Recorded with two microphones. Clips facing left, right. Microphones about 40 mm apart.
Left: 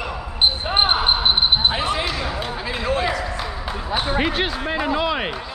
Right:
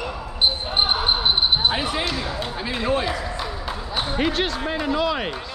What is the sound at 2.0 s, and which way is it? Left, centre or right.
Basketball bounce, centre.